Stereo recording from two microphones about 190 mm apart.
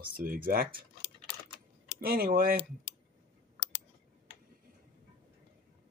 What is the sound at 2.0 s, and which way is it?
Speech, 50° right (ahead or behind).